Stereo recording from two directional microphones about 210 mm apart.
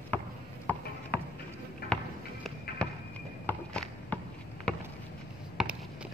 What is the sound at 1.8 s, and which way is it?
Music, 45° left (ahead or behind).